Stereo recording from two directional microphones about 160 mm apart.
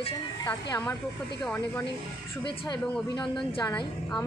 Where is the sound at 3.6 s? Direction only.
20° left (ahead or behind).